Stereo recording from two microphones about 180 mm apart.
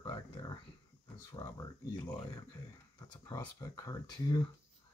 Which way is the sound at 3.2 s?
20° left (ahead or behind).